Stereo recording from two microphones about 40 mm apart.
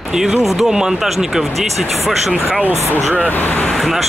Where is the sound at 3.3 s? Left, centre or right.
Left.